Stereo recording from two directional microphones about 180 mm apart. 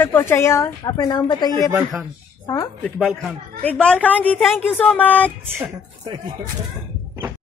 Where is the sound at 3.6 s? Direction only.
5° left (ahead or behind).